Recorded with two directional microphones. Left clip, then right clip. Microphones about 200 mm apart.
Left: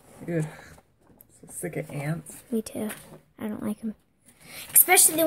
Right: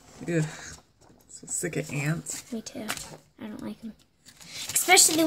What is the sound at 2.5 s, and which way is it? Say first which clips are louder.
Speech: left 5 dB; 40° left (ahead or behind).